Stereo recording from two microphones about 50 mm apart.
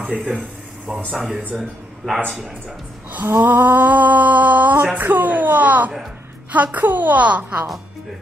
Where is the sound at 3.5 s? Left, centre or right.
Right.